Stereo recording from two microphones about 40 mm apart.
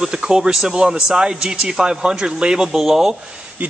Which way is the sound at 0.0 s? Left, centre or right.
Centre.